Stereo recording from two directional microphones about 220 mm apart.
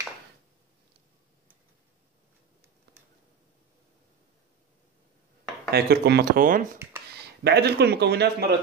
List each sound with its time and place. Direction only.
5.7 s speech: 45° right (ahead or behind)
6.8 s a sound: 10° right (ahead or behind)
7.2 s speech: 50° right (ahead or behind)